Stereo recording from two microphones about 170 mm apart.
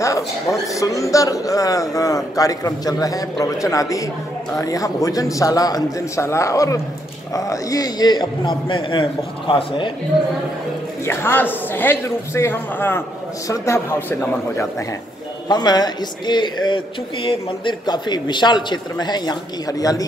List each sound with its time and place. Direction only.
0.0 s speech: 15° left (ahead or behind)
11.1 s a man's voice: 10° left (ahead or behind)
15.4 s speech: 25° left (ahead or behind)